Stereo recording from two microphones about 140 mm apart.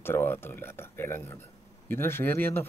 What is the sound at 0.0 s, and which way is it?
Speech, 15° left (ahead or behind).